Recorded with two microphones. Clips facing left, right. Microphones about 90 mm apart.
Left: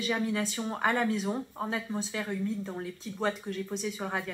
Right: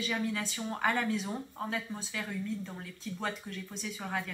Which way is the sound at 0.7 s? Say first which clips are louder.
Left 2 dB; 20° left (ahead or behind).